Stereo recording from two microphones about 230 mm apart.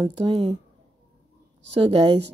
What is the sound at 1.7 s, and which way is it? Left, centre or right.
Speech, right.